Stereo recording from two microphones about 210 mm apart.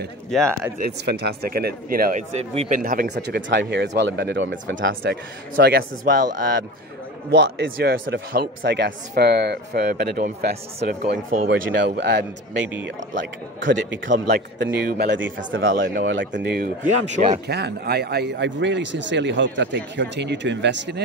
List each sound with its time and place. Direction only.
0.3 s speech: 5° left (ahead or behind)
0.7 s speech: 50° right (ahead or behind)
2.3 s speech: 30° right (ahead or behind)
2.8 s speech: 40° right (ahead or behind)
3.4 s speech: 55° right (ahead or behind)
4.8 s speech: 50° right (ahead or behind)
7.2 s speech: 50° right (ahead or behind)
14.0 s speech: 55° right (ahead or behind)
15.7 s speech: 45° right (ahead or behind)
16.0 s speech: 60° right (ahead or behind); by 17.4 s 35° right (ahead or behind)
17.5 s speech: 50° right (ahead or behind)